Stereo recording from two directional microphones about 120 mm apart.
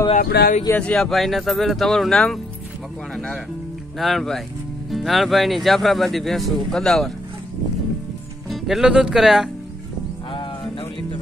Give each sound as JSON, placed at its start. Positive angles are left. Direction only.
{"t": 0.1, "sound": "speech", "side_deg": 70}
{"t": 0.7, "sound": "speech", "side_deg": 10}
{"t": 4.0, "sound": "speech", "side_deg": 0}
{"t": 8.5, "sound": "speech", "side_deg": 0}
{"t": 10.3, "sound": "music", "side_deg": 45}